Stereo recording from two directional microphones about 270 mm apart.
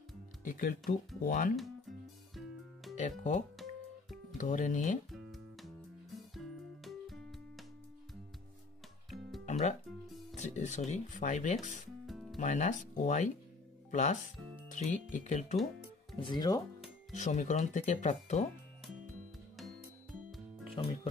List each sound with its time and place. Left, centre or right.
0.4 s speech: left
1.6 s music: centre
3.0 s speech: left
5.1 s music: centre
9.5 s music: left
10.3 s speech: left
12.1 s music: centre
12.4 s speech: left
17.1 s speech: left
19.5 s music: centre
20.7 s music: centre